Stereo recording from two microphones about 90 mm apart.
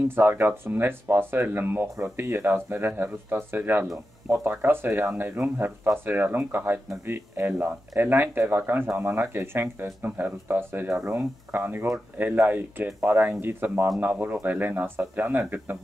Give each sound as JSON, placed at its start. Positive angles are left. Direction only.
{"t": 0.1, "sound": "speech", "side_deg": -25}